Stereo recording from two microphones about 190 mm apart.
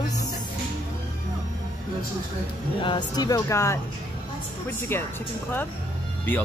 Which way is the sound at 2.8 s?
25° left (ahead or behind).